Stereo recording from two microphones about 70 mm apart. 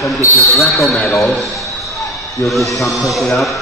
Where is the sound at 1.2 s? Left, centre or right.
Centre.